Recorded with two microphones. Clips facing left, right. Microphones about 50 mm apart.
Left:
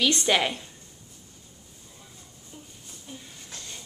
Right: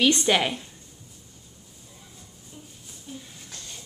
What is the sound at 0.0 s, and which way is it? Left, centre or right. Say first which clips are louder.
Speech: right 3 dB; right.